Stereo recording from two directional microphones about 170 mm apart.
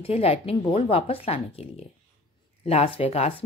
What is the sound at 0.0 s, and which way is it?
A woman's voice, 35° left (ahead or behind).